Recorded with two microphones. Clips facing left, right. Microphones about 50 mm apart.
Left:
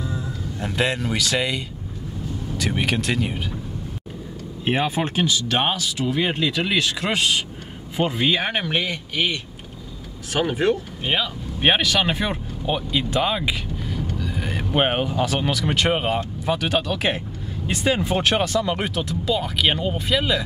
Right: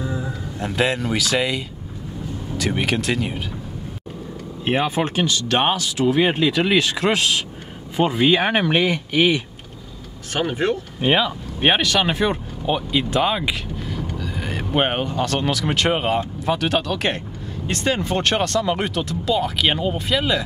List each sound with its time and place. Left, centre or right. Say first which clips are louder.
0.0 s a sound: right 3 dB; centre
0.6 s speech: right 2 dB; centre
4.6 s speech: right 2 dB; centre
10.3 s speech: left 1 dB; centre
11.0 s speech: right 5 dB; centre